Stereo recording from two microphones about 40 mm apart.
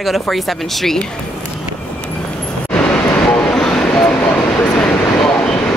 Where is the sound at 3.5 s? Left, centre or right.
Centre.